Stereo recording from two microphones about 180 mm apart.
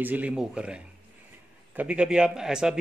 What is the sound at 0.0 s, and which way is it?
Speech, 10° right (ahead or behind).